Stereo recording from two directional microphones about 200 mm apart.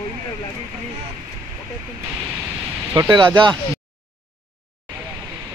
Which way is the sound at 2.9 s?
20° right (ahead or behind).